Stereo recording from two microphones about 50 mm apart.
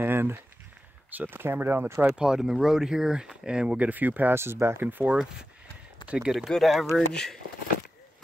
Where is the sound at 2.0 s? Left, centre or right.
Centre; by 4.4 s right.